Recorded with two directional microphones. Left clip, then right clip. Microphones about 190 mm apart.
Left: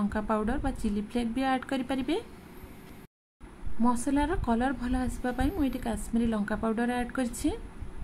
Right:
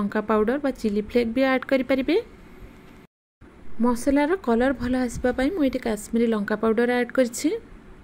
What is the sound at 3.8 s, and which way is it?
Speech, 15° right (ahead or behind).